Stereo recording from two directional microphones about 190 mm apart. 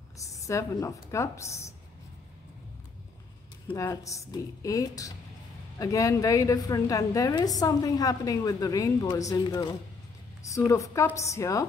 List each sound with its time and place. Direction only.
0.2 s speech: 15° left (ahead or behind)
3.6 s a woman's voice: 15° left (ahead or behind)